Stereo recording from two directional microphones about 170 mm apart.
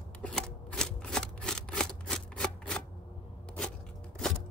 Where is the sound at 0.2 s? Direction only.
5° left (ahead or behind).